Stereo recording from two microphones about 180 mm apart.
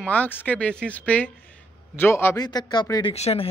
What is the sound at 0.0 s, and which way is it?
A man's voice, 10° left (ahead or behind).